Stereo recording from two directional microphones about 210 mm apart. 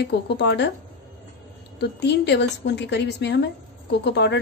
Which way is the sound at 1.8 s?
55° left (ahead or behind).